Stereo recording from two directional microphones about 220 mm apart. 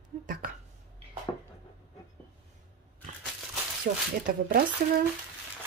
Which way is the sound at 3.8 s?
40° right (ahead or behind).